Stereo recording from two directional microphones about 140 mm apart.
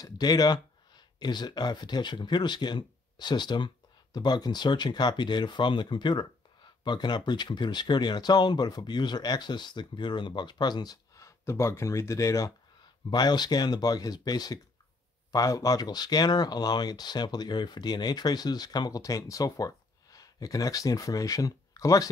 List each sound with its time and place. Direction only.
0.0 s speech: 30° left (ahead or behind)